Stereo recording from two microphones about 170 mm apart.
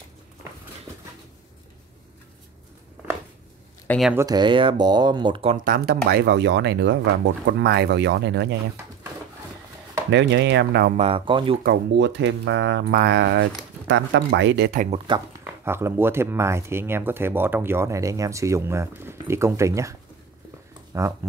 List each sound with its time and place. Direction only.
4.1 s speech: 20° right (ahead or behind)
5.6 s speech: 55° right (ahead or behind)
6.0 s speech: 75° right (ahead or behind)
10.1 s speech: 90° right; by 11.0 s 70° right (ahead or behind)
11.0 s speech: 35° right (ahead or behind)
11.6 s speech: 80° right
13.8 s speech: 90° right
15.1 s speech: 30° right (ahead or behind)
15.4 s speech: 15° right (ahead or behind)